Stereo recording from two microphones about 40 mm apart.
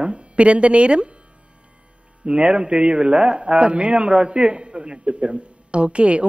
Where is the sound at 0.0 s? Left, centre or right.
Right.